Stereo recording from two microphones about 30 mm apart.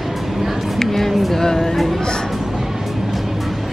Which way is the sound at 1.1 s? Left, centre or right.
Centre.